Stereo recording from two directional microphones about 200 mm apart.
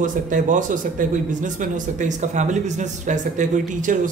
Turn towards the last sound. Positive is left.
turn(degrees=-40)  # may be behind; listen again after turning